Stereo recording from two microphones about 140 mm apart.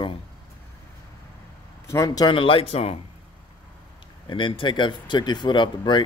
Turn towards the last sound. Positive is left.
turn(degrees=35)  # may be behind; listen again after turning